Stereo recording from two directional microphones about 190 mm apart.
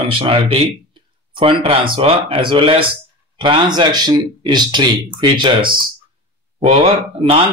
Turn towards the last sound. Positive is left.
turn(degrees=-30)  # may be behind; listen again after turning